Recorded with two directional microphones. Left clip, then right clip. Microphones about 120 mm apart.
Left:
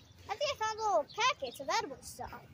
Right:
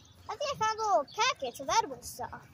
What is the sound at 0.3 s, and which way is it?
Speech, 10° right (ahead or behind).